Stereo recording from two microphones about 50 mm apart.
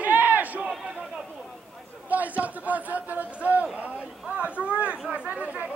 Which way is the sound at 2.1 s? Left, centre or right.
Right.